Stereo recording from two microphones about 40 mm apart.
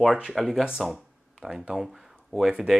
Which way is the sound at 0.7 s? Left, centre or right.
Centre.